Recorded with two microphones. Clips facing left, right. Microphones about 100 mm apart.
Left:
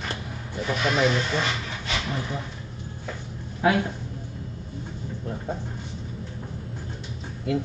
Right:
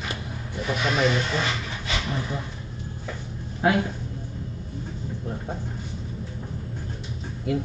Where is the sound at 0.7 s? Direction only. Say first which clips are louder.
Even; centre (ahead or behind).